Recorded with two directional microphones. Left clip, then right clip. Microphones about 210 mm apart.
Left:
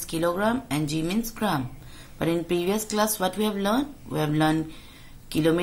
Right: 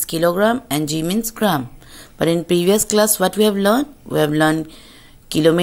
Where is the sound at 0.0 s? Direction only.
35° right (ahead or behind).